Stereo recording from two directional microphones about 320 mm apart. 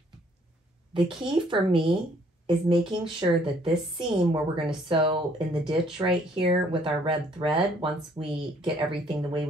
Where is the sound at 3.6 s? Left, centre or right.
Centre.